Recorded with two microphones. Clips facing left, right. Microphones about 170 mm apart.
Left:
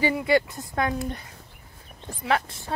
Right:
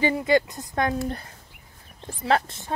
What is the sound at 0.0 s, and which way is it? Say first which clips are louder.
Speech: right 1 dB; 20° right (ahead or behind).